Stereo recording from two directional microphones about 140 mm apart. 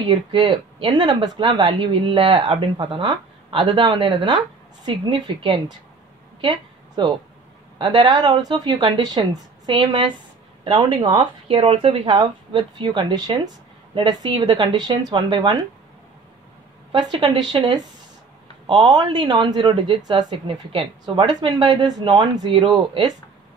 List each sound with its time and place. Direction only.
0.0 s speech: 35° right (ahead or behind)
7.8 s speech: 35° right (ahead or behind)
16.9 s speech: 30° right (ahead or behind)